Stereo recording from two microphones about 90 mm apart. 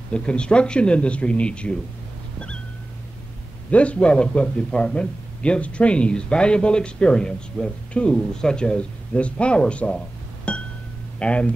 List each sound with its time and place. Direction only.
0.1 s a man's voice: 10° left (ahead or behind)
3.7 s a man's voice: 15° left (ahead or behind)